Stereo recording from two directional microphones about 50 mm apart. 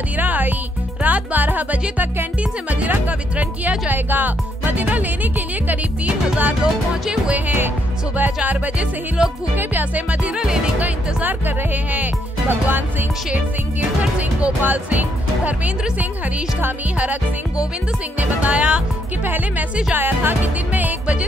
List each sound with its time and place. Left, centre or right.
0.2 s music: right
1.0 s speech: right
6.6 s music: centre
7.3 s speech: right
8.5 s music: right
9.6 s speech: right
10.3 s music: centre
10.8 s speech: right
18.4 s music: right
19.2 s speech: right